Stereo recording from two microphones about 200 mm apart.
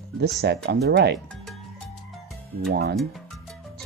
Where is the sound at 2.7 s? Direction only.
55° right (ahead or behind).